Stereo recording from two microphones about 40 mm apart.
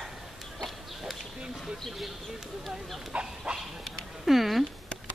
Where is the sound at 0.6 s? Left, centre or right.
Centre.